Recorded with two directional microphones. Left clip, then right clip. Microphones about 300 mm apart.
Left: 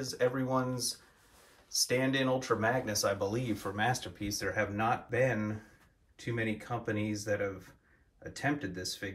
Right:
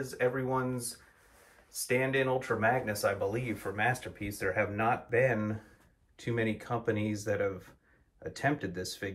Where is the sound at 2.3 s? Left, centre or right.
Centre.